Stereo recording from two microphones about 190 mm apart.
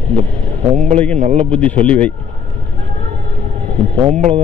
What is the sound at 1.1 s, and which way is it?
Speech, 40° right (ahead or behind).